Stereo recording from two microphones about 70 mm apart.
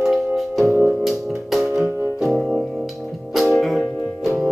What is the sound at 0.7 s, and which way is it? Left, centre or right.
Music, centre.